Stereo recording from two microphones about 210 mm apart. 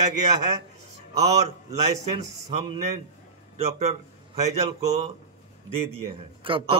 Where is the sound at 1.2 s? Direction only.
30° right (ahead or behind).